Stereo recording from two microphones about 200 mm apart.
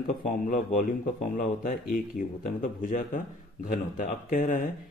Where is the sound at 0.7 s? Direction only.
40° left (ahead or behind).